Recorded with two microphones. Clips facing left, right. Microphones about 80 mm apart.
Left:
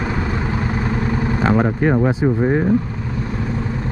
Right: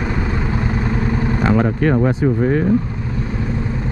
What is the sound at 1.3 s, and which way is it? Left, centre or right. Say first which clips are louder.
Speech: even; centre.